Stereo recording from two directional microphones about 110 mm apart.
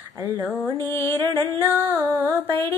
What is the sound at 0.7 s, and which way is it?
Music, 25° left (ahead or behind).